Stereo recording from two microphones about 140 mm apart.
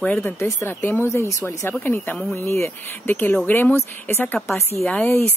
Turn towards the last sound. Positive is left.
turn(degrees=15)  # may be behind; listen again after turning